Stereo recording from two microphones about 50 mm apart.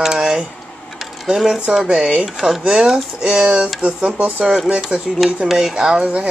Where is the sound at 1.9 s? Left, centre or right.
Centre.